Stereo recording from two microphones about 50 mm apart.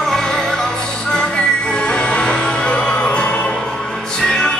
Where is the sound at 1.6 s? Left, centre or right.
Centre.